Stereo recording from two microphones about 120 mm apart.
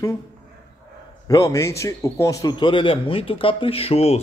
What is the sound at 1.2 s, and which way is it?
A man's voice, 30° left (ahead or behind).